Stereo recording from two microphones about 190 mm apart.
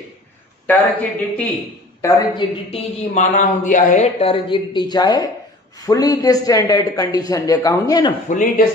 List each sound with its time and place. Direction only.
0.7 s speech: 10° left (ahead or behind)
2.0 s a man's voice: 20° left (ahead or behind)
8.3 s speech: 40° left (ahead or behind)